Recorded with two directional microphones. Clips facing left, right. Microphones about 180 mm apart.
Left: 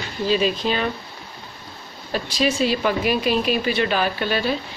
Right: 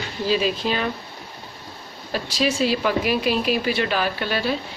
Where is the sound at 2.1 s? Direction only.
Centre (ahead or behind).